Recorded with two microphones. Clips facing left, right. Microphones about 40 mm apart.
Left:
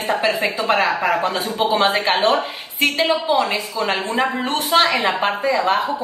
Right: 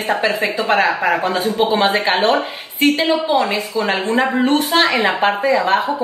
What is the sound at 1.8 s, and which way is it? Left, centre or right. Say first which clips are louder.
Speech: right 2 dB; centre.